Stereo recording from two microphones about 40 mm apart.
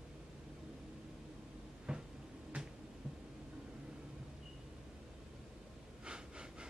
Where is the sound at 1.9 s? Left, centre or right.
Centre.